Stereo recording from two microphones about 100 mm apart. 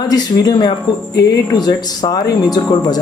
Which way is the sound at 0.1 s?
45° left (ahead or behind).